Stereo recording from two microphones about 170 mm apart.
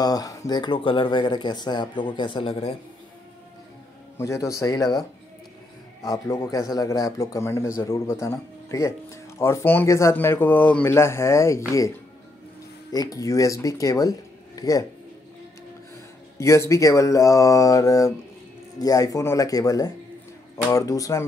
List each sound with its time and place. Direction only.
0.0 s speech: 20° left (ahead or behind)
4.2 s speech: 20° left (ahead or behind)
6.0 s a man's voice: 20° left (ahead or behind)
12.9 s speech: 20° left (ahead or behind)
16.3 s speech: 15° left (ahead or behind)